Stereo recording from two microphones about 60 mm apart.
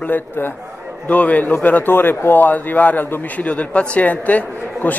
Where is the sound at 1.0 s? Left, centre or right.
Left.